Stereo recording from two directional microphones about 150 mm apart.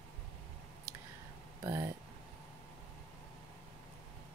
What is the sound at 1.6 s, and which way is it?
Speech, 20° right (ahead or behind).